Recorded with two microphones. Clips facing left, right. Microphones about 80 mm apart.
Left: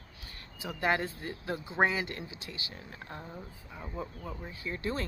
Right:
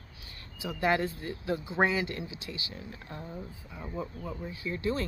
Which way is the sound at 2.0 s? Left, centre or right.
Left.